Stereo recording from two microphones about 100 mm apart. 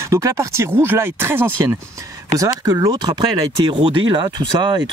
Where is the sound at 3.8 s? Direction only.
55° right (ahead or behind).